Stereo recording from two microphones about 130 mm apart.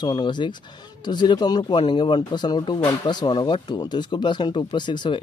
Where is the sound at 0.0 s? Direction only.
35° left (ahead or behind).